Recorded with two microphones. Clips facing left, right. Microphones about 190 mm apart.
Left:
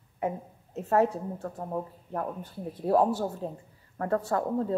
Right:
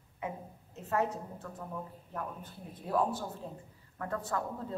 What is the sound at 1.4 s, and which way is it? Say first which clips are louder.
Speech: left 8 dB; 45° left (ahead or behind).